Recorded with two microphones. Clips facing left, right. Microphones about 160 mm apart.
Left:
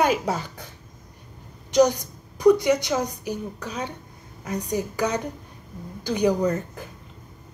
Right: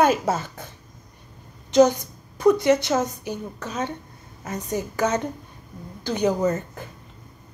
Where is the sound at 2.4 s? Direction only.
15° left (ahead or behind).